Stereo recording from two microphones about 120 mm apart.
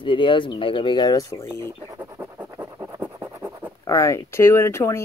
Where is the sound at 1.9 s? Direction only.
20° right (ahead or behind).